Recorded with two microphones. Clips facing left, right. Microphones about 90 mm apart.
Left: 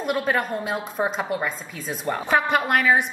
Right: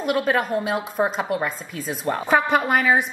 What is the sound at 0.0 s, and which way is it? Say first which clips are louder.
A woman's voice: right 2 dB; centre (ahead or behind).